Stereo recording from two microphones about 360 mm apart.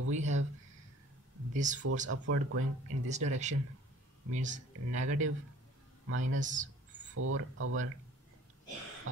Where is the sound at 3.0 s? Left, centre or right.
Centre.